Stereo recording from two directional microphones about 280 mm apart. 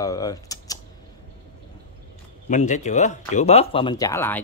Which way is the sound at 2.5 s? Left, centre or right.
Left.